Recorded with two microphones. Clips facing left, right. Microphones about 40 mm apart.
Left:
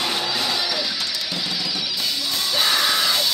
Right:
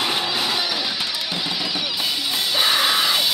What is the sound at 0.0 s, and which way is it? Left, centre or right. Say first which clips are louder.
Music: right 1 dB; centre.